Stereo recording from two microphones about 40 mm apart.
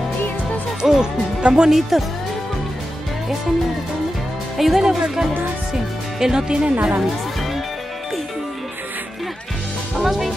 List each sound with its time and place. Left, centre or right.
0.8 s speech: centre
1.7 s speech: centre
4.6 s speech: centre; by 7.0 s right
9.9 s speech: centre